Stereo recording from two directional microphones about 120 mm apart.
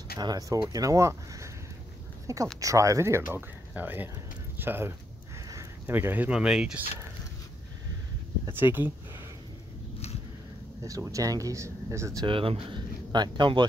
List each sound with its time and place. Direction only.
0.2 s speech: 30° right (ahead or behind); by 6.8 s 10° right (ahead or behind)
8.5 s speech: 15° right (ahead or behind)
10.8 s speech: 30° right (ahead or behind)
12.3 s speech: 50° right (ahead or behind)